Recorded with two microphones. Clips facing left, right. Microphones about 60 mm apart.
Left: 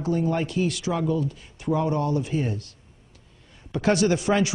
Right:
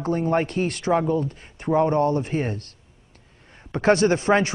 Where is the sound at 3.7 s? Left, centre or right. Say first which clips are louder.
Right 3 dB; right.